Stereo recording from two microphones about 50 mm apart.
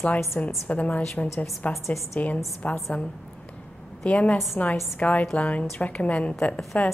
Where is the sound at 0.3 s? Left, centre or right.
Left.